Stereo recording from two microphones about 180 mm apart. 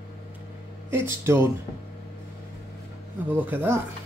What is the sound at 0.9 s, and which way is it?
Speech, 15° right (ahead or behind).